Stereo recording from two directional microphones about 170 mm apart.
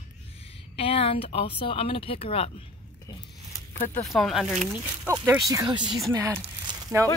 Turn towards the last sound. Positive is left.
turn(degrees=-20)  # may be behind; listen again after turning